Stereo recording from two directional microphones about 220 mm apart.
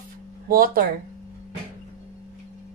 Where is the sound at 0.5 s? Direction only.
40° right (ahead or behind).